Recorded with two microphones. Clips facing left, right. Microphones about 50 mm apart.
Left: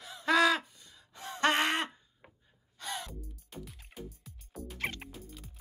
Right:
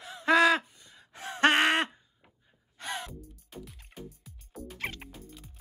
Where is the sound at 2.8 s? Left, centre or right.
Right.